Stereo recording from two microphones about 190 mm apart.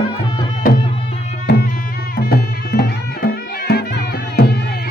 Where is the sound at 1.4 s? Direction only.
50° left (ahead or behind).